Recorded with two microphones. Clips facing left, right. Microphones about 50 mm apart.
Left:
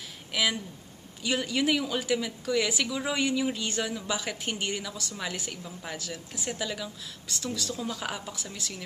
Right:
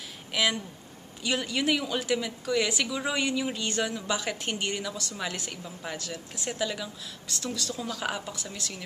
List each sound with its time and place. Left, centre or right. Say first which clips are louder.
0.3 s speech: right 1 dB; centre